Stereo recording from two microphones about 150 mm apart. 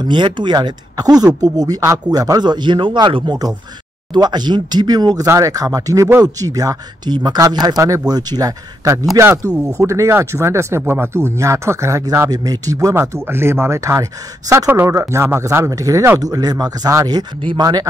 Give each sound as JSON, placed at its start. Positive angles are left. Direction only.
{"t": 0.0, "sound": "speech", "side_deg": -30}